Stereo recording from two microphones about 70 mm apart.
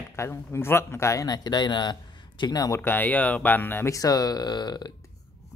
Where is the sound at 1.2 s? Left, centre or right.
Left.